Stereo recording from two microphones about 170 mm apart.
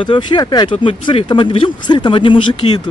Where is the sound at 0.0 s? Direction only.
30° left (ahead or behind).